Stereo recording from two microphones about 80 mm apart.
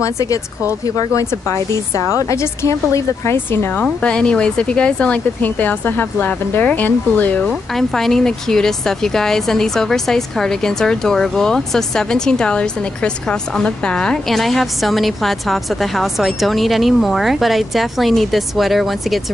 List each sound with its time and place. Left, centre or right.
0.0 s speech: left
3.4 s speech: left
3.8 s speech: centre
7.4 s speech: centre